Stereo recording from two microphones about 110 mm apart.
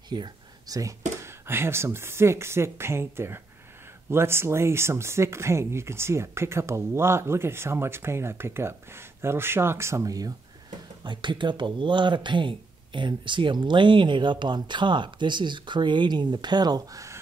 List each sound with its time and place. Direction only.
0.1 s speech: 35° right (ahead or behind)
1.2 s speech: 20° right (ahead or behind)
11.1 s speech: 45° right (ahead or behind); by 17.2 s 30° right (ahead or behind)